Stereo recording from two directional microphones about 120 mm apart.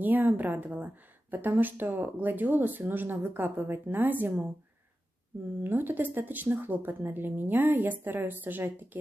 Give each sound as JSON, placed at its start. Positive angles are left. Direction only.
{"t": 0.0, "sound": "a woman's voice", "side_deg": -15}
{"t": 5.6, "sound": "a woman's voice", "side_deg": -15}